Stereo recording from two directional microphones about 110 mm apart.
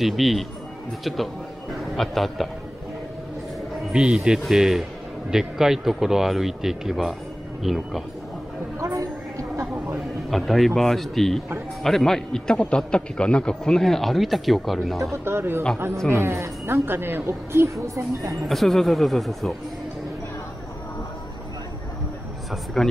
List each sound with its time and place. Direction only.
0.0 s a man's voice: centre (ahead or behind)
3.9 s a man's voice: 10° right (ahead or behind)
8.7 s a sound: 30° right (ahead or behind)
10.3 s a man's voice: centre (ahead or behind)
15.2 s a woman's voice: 20° right (ahead or behind)
18.3 s a man's voice: centre (ahead or behind)
22.8 s a man's voice: 5° left (ahead or behind)